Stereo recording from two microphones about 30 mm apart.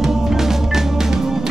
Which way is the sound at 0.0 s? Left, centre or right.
Centre.